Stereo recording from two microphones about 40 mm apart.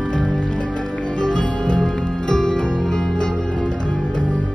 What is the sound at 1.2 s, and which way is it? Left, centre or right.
Music, left.